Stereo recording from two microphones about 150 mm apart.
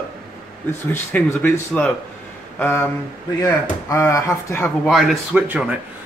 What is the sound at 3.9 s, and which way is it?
A man's voice, 20° left (ahead or behind).